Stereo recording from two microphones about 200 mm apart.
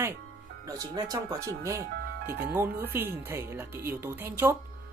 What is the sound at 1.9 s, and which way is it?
Music, 50° right (ahead or behind).